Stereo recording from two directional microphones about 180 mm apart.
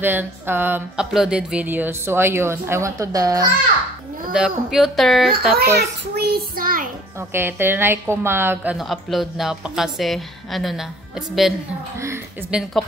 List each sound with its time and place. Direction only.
0.0 s speech: 10° right (ahead or behind)
4.3 s a woman's voice: 5° right (ahead or behind)
5.6 s child singing: 65° right (ahead or behind)
7.2 s speech: 10° right (ahead or behind)
8.7 s a woman's voice: centre (ahead or behind)
12.0 s a sound: 15° right (ahead or behind)